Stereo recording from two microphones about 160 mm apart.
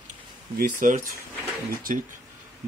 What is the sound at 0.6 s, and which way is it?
Speech, 55° right (ahead or behind).